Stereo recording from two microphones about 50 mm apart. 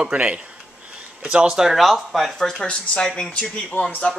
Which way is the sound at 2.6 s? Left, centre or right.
Centre.